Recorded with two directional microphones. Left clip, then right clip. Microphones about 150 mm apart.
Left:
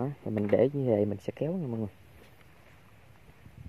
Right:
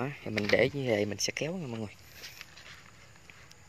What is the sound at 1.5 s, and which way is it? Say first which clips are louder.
Speech: left 3 dB; centre (ahead or behind).